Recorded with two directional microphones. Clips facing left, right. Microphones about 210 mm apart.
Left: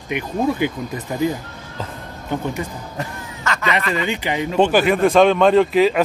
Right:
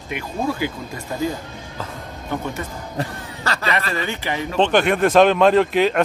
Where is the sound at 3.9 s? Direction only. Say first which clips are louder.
Left 3 dB; 15° left (ahead or behind).